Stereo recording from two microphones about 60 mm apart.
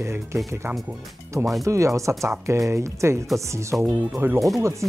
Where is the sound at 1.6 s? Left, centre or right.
Right.